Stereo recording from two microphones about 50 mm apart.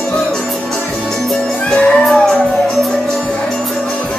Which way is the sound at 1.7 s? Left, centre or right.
Centre.